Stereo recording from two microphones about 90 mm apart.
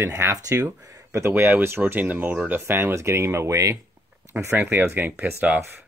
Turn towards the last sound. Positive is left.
turn(degrees=-20)  # may be behind; listen again after turning